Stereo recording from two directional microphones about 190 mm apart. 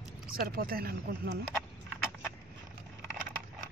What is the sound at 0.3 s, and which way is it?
Speech, 50° right (ahead or behind).